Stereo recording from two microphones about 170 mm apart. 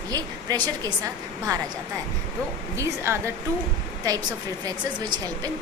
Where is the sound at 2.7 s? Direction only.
15° right (ahead or behind).